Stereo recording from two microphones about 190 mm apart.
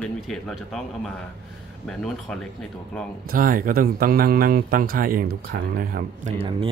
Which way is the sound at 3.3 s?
45° right (ahead or behind).